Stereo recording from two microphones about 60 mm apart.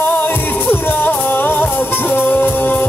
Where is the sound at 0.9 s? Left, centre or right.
Left.